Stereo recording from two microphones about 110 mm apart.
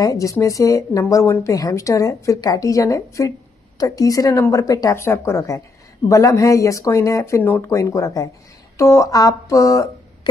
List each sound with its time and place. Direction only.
0.0 s speech: 30° left (ahead or behind)